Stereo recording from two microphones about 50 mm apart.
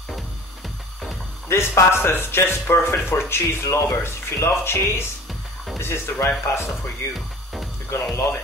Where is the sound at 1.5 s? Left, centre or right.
Left.